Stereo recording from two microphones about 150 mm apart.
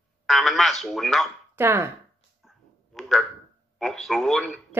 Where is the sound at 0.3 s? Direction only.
Centre (ahead or behind).